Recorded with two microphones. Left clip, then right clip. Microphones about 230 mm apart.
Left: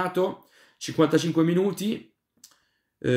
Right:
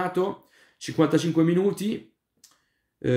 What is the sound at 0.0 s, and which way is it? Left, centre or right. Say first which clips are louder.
Speech: left 1 dB; centre.